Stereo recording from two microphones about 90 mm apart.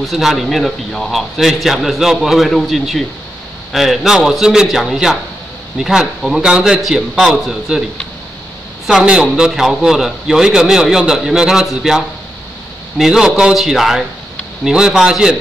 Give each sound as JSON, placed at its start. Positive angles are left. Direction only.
{"t": 0.0, "sound": "a man's voice", "side_deg": 0}
{"t": 8.8, "sound": "a man's voice", "side_deg": -10}